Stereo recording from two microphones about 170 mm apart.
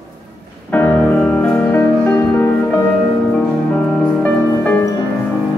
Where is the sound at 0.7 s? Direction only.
10° left (ahead or behind).